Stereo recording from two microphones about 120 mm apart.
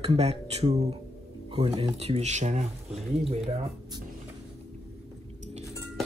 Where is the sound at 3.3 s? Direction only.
60° right (ahead or behind).